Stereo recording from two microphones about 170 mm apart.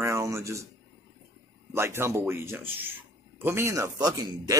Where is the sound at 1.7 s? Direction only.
15° right (ahead or behind).